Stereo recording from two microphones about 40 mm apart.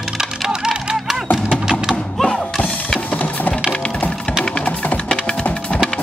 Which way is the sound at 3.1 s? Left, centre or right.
Left.